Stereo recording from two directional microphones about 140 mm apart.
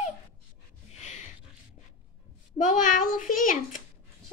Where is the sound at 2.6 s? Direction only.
65° left (ahead or behind).